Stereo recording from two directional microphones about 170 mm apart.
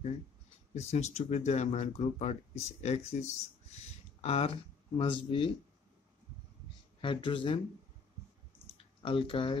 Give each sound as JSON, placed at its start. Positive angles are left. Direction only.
{"t": 0.7, "sound": "speech", "side_deg": 40}
{"t": 7.0, "sound": "speech", "side_deg": 30}
{"t": 8.6, "sound": "a sound", "side_deg": 30}